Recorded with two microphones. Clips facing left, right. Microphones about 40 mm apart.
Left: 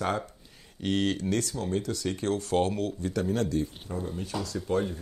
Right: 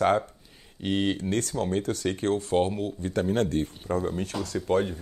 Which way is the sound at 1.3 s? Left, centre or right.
Right.